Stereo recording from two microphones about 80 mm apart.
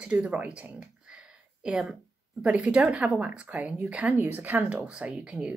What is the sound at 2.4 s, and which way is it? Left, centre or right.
Speech, centre.